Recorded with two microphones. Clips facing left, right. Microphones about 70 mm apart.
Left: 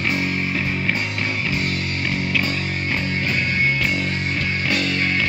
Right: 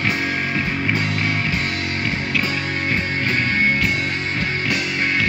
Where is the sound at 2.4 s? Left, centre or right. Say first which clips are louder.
Right 2 dB; right.